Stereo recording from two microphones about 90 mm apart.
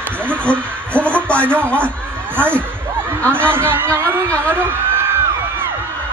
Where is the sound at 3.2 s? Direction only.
25° right (ahead or behind).